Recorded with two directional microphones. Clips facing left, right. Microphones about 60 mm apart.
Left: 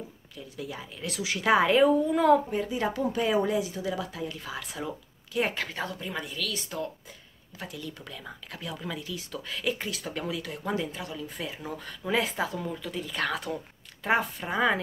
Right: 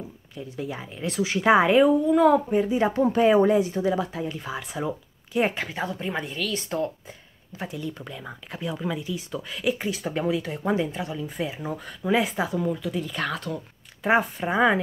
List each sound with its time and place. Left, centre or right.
0.6 s speech: right
1.8 s speech: centre
2.5 s speech: right
3.0 s speech: right; by 5.9 s centre
5.9 s a woman's voice: right
7.5 s speech: right
9.8 s speech: right; by 13.4 s centre
14.0 s speech: right